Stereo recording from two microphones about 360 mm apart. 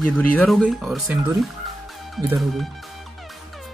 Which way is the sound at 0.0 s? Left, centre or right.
Centre.